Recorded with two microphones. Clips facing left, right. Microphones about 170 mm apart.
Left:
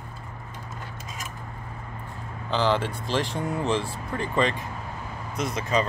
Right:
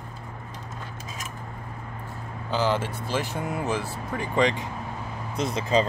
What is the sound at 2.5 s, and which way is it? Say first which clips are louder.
Speech: left 1 dB; 10° right (ahead or behind).